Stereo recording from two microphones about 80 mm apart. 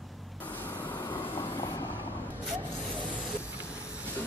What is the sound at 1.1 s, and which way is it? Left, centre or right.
Train, left.